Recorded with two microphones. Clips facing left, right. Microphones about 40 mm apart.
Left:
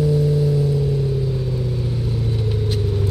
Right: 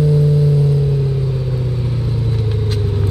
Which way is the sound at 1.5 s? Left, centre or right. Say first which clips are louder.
Right 2 dB; right.